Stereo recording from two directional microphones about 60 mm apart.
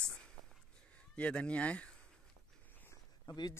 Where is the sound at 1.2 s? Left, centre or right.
Centre.